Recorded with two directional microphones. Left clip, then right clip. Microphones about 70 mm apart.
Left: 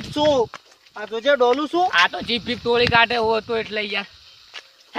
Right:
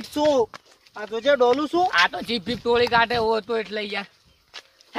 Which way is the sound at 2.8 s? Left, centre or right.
Centre.